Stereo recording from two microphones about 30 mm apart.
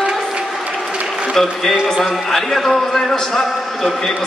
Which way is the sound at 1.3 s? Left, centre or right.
Centre.